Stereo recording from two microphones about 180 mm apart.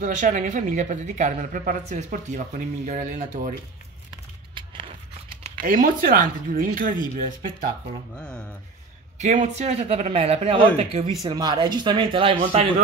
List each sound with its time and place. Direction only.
0.0 s a woman's voice: 45° right (ahead or behind)
4.1 s a sound: 25° right (ahead or behind)
5.6 s a woman's voice: 50° right (ahead or behind)
8.2 s speech: 5° left (ahead or behind)
9.2 s a man's voice: 40° right (ahead or behind)